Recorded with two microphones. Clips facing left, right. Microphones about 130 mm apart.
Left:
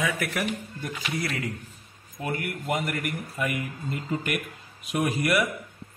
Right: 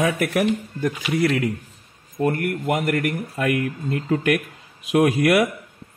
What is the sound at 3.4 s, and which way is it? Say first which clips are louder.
Speech: right 8 dB; 75° right (ahead or behind).